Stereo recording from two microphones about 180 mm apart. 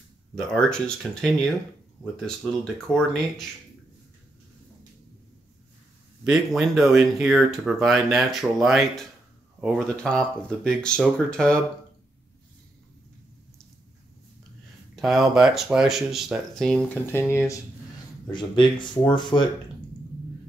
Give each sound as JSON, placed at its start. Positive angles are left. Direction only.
{"t": 0.5, "sound": "speech", "side_deg": 5}
{"t": 6.2, "sound": "speech", "side_deg": 0}
{"t": 15.0, "sound": "speech", "side_deg": 0}
{"t": 18.3, "sound": "speech", "side_deg": 25}